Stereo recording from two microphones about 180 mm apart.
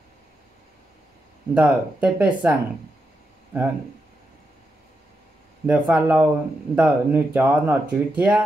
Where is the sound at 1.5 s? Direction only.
10° right (ahead or behind).